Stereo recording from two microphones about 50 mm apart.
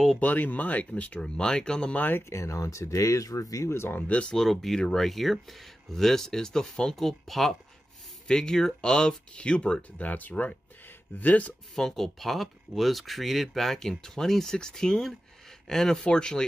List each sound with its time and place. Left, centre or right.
0.2 s speech: left
1.2 s speech: centre
2.0 s speech: left
2.2 s speech: left
4.1 s speech: left
4.4 s speech: centre
8.3 s speech: centre; by 11.5 s left
11.7 s speech: centre